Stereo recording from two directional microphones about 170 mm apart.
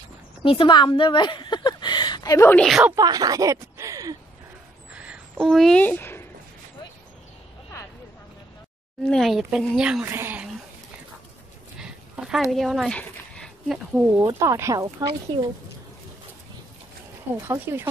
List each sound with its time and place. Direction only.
0.4 s speech: 30° left (ahead or behind)
2.6 s speech: centre (ahead or behind)
3.0 s speech: 20° right (ahead or behind)
4.9 s a sound: 5° right (ahead or behind); by 6.2 s 15° left (ahead or behind)
9.0 s speech: centre (ahead or behind)
11.8 s a sound: 5° right (ahead or behind)
14.2 s speech: 15° right (ahead or behind)
17.4 s speech: 15° right (ahead or behind)